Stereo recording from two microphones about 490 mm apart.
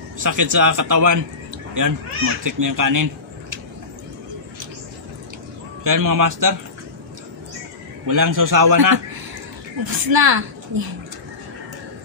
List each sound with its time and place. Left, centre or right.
0.2 s a man's voice: right
5.9 s a man's voice: right
8.1 s a man's voice: right